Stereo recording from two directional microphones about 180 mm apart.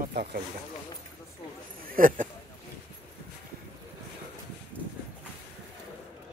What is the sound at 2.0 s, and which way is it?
Speech, 50° right (ahead or behind).